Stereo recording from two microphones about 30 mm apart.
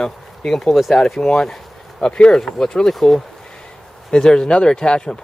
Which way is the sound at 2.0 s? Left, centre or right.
Left.